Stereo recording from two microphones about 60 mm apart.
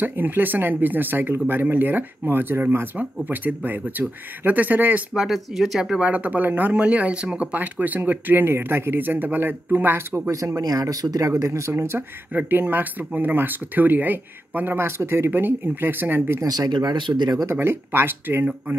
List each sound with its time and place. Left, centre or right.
0.0 s speech: right
5.1 s speech: centre
6.0 s speech: right
10.2 s speech: right
12.3 s speech: right
16.3 s speech: right
17.5 s speech: right